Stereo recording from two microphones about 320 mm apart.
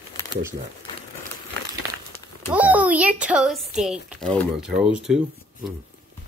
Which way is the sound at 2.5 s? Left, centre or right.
Centre.